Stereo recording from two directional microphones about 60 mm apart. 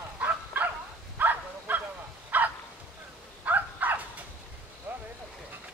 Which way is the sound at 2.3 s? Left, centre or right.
Right.